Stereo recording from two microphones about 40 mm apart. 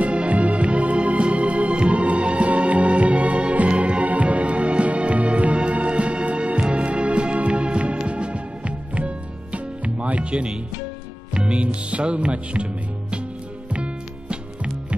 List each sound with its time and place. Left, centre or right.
0.0 s music: right
13.7 s music: right